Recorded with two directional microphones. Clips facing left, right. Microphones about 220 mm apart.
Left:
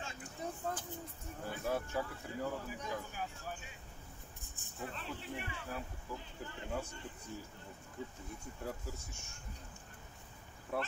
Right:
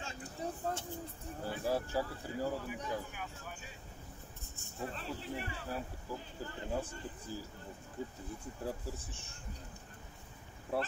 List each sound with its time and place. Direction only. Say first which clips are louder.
0.0 s vehicle: right 2 dB; 35° right (ahead or behind)
1.4 s speech: right 3 dB; 35° right (ahead or behind)
4.7 s speech: right 3 dB; 35° right (ahead or behind)
10.7 s speech: right 3 dB; 30° right (ahead or behind)